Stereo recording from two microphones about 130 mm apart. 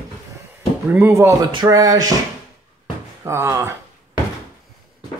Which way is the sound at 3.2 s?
20° right (ahead or behind).